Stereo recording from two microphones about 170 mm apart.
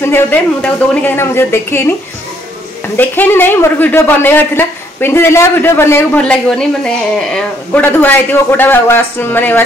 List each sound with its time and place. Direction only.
0.0 s a woman's voice: 10° left (ahead or behind)
3.0 s a woman's voice: 10° left (ahead or behind)